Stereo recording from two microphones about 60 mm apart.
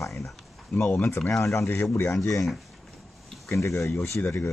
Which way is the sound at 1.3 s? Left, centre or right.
Left.